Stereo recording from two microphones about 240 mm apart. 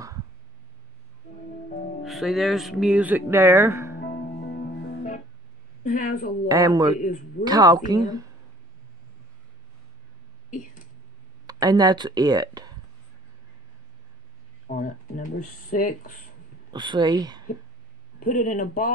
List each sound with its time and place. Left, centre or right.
2.0 s speech: centre
3.9 s music: left
5.9 s speech: left
6.5 s a woman's voice: centre
7.0 s speech: left
7.4 s a woman's voice: centre
11.4 s speech: centre
14.7 s speech: left
16.7 s a woman's voice: centre
18.2 s speech: left